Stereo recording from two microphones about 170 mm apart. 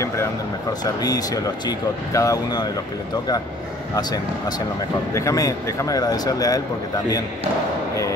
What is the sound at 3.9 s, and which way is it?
A man's voice, 25° left (ahead or behind).